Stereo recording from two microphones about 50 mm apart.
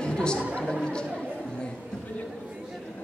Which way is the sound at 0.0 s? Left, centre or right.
Centre.